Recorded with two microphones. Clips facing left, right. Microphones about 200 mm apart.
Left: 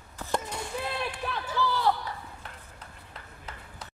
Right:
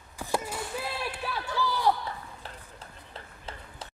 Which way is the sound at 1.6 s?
15° right (ahead or behind).